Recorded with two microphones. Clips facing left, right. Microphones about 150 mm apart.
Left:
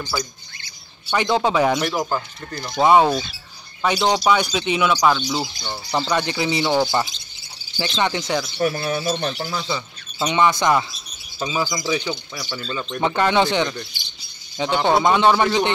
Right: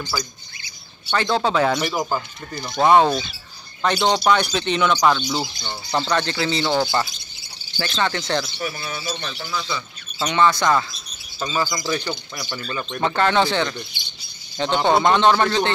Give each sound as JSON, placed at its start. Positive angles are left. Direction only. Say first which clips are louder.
{"t": 1.1, "sound": "speech", "louder": "left 1 dB", "side_deg": 15}
{"t": 1.8, "sound": "speech", "louder": "left 1 dB", "side_deg": -5}
{"t": 2.8, "sound": "speech", "louder": "even", "side_deg": 5}
{"t": 8.5, "sound": "speech", "louder": "left 8 dB", "side_deg": 50}
{"t": 10.1, "sound": "speech", "louder": "even", "side_deg": 15}
{"t": 13.0, "sound": "speech", "louder": "left 1 dB", "side_deg": 15}
{"t": 14.8, "sound": "speech", "louder": "even", "side_deg": 5}